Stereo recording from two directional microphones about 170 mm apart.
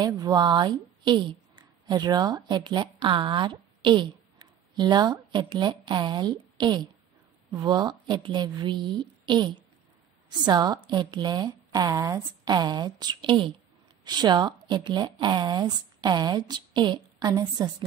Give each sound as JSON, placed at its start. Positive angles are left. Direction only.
{"t": 0.0, "sound": "a woman's voice", "side_deg": -25}